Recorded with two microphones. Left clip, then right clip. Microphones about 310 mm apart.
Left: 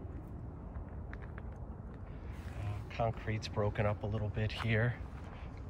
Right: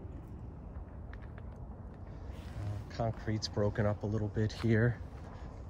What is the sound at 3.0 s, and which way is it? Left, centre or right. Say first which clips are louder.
Speech: even; right.